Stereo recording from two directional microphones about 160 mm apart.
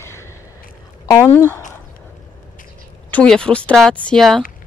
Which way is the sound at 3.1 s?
5° left (ahead or behind).